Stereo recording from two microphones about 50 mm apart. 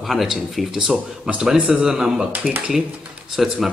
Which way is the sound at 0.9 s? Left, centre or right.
Right.